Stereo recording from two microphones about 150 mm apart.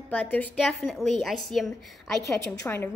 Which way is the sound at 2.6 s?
15° left (ahead or behind).